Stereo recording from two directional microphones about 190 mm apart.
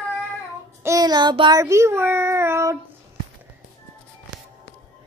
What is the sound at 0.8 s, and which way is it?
Speech, 20° right (ahead or behind).